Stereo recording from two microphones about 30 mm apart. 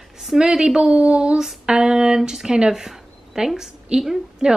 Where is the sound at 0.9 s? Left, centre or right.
Right.